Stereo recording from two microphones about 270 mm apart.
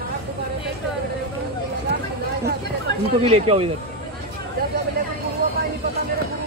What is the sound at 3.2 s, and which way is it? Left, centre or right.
Speech, right.